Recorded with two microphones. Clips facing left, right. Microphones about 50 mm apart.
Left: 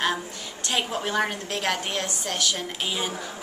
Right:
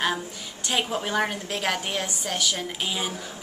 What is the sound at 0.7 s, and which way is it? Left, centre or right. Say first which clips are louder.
A woman's voice: right 1 dB; centre.